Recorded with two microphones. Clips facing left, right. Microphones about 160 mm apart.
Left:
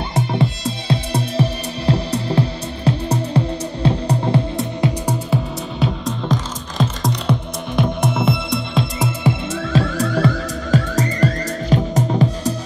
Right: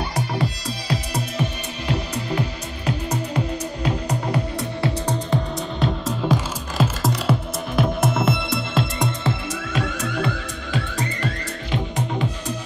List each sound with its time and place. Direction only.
0.1 s music: 25° left (ahead or behind)
5.0 s music: 5° left (ahead or behind)
6.0 s music: 5° right (ahead or behind)
9.5 s music: 30° left (ahead or behind)